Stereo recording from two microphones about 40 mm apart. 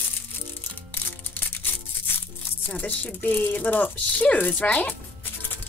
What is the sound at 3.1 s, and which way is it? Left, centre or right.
Speech, left.